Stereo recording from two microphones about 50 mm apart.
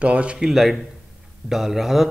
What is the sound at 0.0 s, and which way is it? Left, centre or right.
Speech, right.